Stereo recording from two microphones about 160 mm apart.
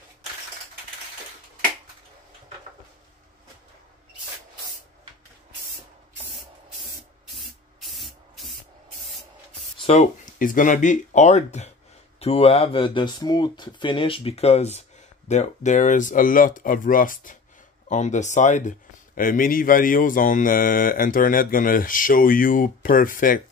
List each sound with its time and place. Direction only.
7.3 s spray: centre (ahead or behind)
9.8 s a sound: 40° left (ahead or behind)
10.4 s speech: 55° left (ahead or behind)